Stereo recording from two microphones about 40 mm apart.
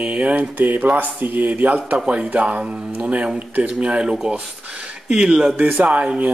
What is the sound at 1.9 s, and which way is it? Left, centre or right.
Speech, right.